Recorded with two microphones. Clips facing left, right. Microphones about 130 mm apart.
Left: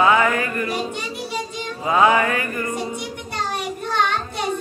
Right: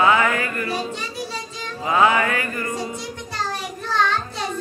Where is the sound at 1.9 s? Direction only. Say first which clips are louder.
Left 1 dB; 20° left (ahead or behind).